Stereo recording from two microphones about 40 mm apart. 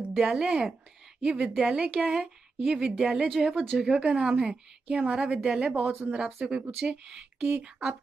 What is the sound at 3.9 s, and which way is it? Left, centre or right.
A woman's voice, right.